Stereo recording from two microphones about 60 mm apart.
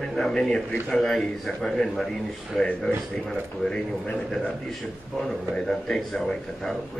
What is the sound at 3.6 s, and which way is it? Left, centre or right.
Speech, centre.